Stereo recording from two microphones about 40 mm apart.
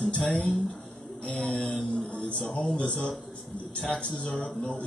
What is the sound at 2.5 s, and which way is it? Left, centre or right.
Speech, left.